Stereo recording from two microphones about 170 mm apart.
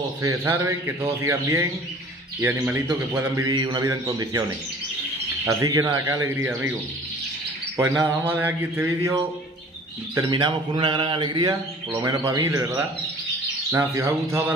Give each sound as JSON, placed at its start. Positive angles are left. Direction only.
{"t": 0.2, "sound": "speech", "side_deg": -20}
{"t": 7.7, "sound": "speech", "side_deg": -15}